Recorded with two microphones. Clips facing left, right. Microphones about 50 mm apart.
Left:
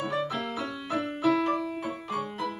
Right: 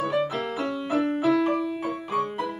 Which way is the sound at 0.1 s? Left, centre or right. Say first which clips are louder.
Right 4 dB; centre.